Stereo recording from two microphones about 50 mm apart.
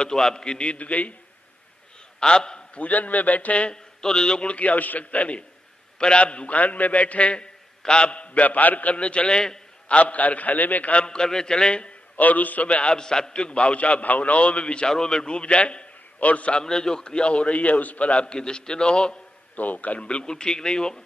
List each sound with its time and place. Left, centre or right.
0.0 s a man's voice: centre; by 1.1 s left
2.1 s a man's voice: centre
2.8 s a man's voice: left; by 9.6 s centre
9.8 s a man's voice: left
11.1 s a man's voice: centre
12.2 s a man's voice: left
16.6 s a man's voice: centre
19.5 s a man's voice: left; by 21.0 s centre